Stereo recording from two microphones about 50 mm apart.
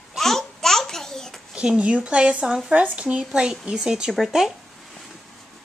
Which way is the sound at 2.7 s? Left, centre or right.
Right.